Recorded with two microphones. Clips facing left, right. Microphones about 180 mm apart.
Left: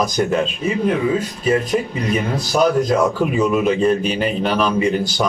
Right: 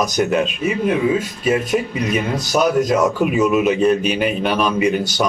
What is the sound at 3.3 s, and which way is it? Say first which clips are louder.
A man's voice: right 1 dB; 5° right (ahead or behind).